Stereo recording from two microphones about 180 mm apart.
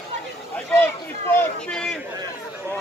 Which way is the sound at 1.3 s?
5° left (ahead or behind).